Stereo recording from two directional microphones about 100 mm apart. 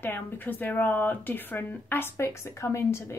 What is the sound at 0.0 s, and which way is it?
A woman's voice, 20° left (ahead or behind).